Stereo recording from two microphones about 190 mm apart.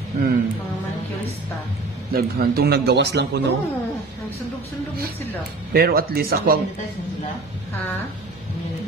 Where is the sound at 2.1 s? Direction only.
55° right (ahead or behind).